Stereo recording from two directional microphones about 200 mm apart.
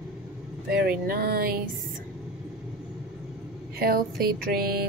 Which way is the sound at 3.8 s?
50° right (ahead or behind).